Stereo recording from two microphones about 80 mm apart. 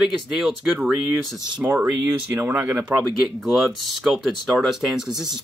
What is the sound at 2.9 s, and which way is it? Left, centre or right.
Speech, centre.